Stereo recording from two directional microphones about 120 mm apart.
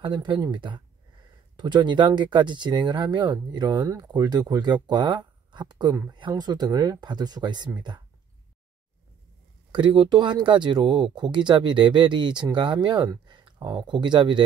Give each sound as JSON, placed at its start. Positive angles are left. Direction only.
{"t": 0.0, "sound": "speech", "side_deg": -40}
{"t": 9.7, "sound": "speech", "side_deg": -45}